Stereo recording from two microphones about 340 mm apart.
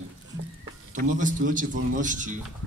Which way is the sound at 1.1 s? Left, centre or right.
Right.